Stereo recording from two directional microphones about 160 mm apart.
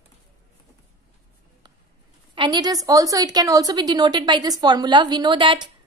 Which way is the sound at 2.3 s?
30° right (ahead or behind).